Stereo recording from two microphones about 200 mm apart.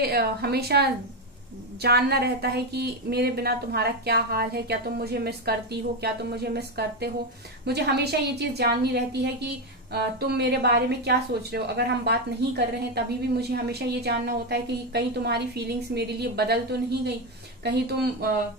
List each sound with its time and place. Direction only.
0.0 s speech: 50° right (ahead or behind)
17.6 s speech: 55° right (ahead or behind)